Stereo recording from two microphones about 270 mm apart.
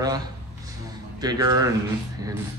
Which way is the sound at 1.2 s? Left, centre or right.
Centre.